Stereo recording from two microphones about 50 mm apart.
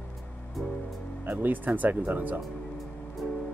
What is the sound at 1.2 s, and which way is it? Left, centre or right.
Speech, right.